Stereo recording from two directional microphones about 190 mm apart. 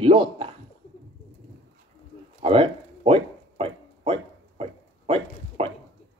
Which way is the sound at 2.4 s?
30° right (ahead or behind).